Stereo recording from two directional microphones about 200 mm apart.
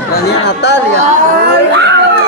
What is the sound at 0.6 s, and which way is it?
Speech, 60° left (ahead or behind).